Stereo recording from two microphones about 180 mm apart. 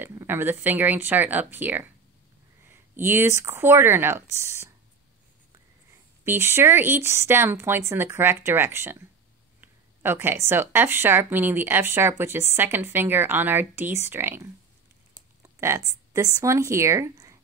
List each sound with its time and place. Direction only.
0.0 s speech: 15° right (ahead or behind)
6.2 s speech: 15° right (ahead or behind)
15.4 s a sound: 15° right (ahead or behind)
16.3 s speech: 15° right (ahead or behind)